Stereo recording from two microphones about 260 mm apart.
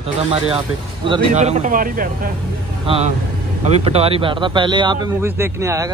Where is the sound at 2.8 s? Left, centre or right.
Right.